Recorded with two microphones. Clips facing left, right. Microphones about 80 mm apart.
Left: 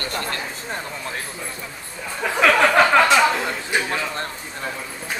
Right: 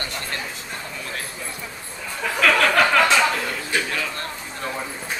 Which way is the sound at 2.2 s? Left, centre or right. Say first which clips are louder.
Left 3 dB; centre.